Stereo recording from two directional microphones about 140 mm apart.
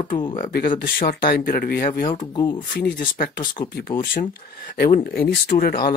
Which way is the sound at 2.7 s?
90° left.